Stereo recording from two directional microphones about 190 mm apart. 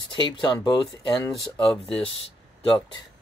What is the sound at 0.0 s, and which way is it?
Speech, 25° left (ahead or behind).